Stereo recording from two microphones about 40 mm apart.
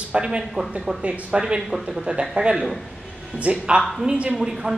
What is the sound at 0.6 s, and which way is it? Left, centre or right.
Speech, right.